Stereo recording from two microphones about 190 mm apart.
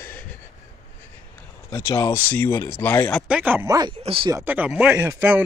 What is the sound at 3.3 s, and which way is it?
Speech, 10° right (ahead or behind).